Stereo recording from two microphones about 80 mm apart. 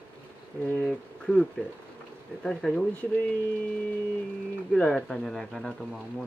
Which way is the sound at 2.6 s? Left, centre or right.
Centre.